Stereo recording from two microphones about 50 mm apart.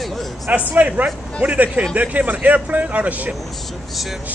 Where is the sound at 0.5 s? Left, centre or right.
Right.